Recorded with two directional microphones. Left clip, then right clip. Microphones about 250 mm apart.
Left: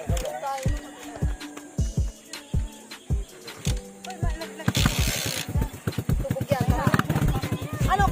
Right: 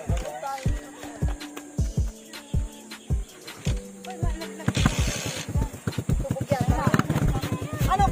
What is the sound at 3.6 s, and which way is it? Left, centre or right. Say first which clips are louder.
Music: left 1 dB; left.